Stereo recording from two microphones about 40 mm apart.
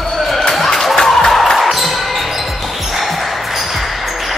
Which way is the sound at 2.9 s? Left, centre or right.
Centre.